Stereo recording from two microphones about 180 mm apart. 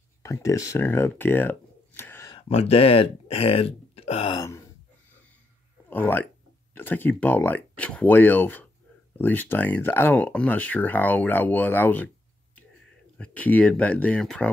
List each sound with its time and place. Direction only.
0.2 s speech: 15° left (ahead or behind)
2.3 s speech: 30° left (ahead or behind)
4.4 s a sound: 15° left (ahead or behind)
5.9 s speech: 10° left (ahead or behind)
13.2 s speech: 5° left (ahead or behind)